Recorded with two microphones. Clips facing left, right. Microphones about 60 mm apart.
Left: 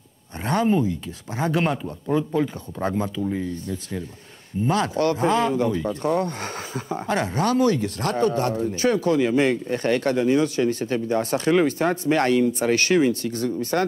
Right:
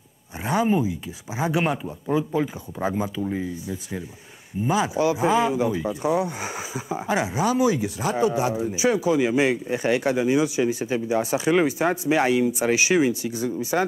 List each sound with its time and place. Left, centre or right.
0.4 s speech: centre